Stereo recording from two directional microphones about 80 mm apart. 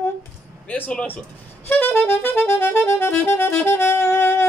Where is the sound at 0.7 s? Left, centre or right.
Centre.